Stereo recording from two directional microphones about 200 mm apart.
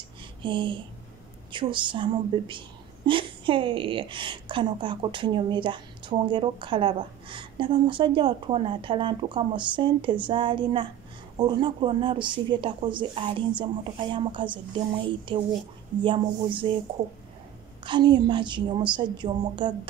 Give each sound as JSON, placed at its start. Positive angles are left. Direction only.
{"t": 0.4, "sound": "a woman's voice", "side_deg": -25}
{"t": 15.9, "sound": "speech", "side_deg": -5}
{"t": 16.6, "sound": "a woman's voice", "side_deg": -25}
{"t": 17.8, "sound": "a woman's voice", "side_deg": -25}